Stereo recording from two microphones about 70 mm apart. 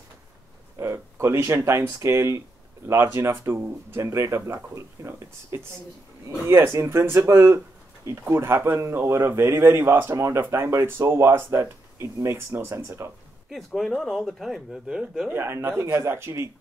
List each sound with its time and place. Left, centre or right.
0.7 s speech: right
6.7 s speech: right
13.5 s speech: centre
15.3 s speech: right